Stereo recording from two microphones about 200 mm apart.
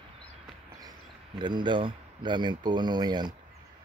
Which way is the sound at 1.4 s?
20° right (ahead or behind).